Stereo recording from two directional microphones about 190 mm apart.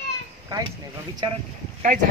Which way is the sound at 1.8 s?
45° right (ahead or behind).